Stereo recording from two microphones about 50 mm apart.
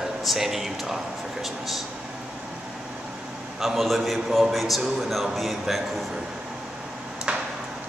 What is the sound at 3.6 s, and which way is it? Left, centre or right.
A man's voice, centre.